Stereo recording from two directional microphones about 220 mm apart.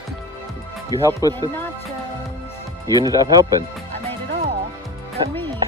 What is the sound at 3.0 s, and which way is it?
Speech, 15° right (ahead or behind).